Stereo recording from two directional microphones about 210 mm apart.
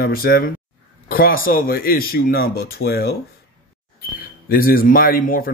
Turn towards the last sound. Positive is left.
turn(degrees=45)  # may be behind; listen again after turning